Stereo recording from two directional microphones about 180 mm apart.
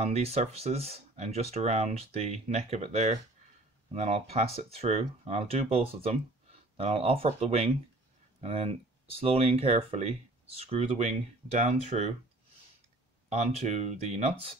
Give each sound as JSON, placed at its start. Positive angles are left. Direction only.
{"t": 0.0, "sound": "speech", "side_deg": -35}
{"t": 13.3, "sound": "speech", "side_deg": -40}